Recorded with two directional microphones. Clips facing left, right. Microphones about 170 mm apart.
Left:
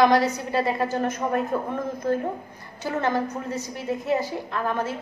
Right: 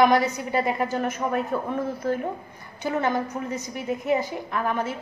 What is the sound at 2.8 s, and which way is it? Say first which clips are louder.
A woman's voice: even; 15° right (ahead or behind).